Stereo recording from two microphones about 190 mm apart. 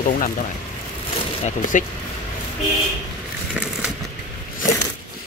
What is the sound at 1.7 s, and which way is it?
Speech, 40° left (ahead or behind).